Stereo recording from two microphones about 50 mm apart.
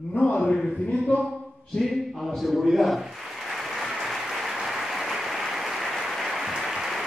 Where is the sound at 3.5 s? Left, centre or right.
Centre.